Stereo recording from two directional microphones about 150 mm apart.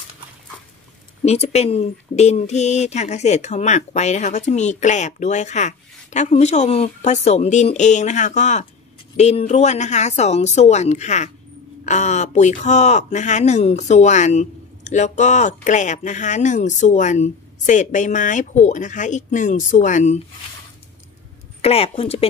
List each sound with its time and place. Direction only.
1.2 s speech: 45° left (ahead or behind)
21.5 s speech: 40° left (ahead or behind)